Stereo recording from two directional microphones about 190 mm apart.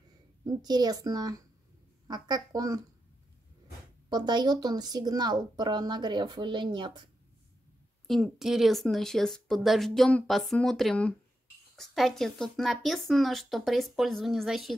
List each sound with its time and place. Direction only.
0.5 s speech: 20° right (ahead or behind)
4.1 s speech: 20° right (ahead or behind)
8.1 s a woman's voice: centre (ahead or behind)